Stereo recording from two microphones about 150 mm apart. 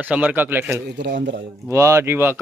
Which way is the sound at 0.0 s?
10° right (ahead or behind).